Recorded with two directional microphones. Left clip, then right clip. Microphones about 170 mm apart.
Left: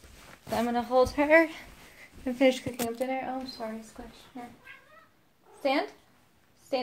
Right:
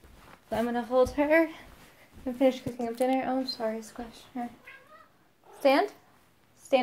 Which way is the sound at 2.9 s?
65° right (ahead or behind).